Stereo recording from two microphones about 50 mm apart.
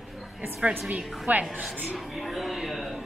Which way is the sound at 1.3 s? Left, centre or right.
Right.